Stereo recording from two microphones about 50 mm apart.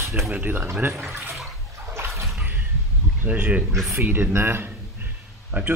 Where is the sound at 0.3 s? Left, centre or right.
Right.